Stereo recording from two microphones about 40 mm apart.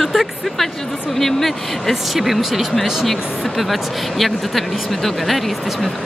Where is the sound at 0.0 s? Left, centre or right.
Centre.